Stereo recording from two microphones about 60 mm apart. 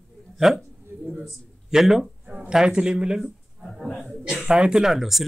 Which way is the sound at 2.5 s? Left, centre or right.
Centre.